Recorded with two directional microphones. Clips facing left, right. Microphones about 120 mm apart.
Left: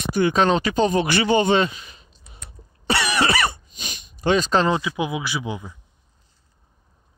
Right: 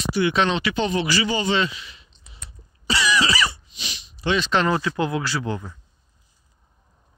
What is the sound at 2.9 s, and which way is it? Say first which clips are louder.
Cough: left 1 dB; 60° left (ahead or behind).